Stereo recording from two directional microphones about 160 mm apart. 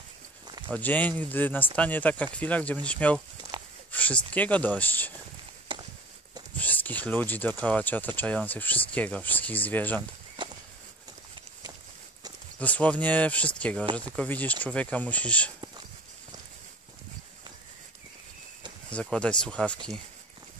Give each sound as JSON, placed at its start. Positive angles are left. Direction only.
{"t": 0.7, "sound": "speech", "side_deg": 10}
{"t": 5.7, "sound": "a sound", "side_deg": -30}
{"t": 6.5, "sound": "speech", "side_deg": 10}
{"t": 12.5, "sound": "speech", "side_deg": 10}
{"t": 18.9, "sound": "speech", "side_deg": 5}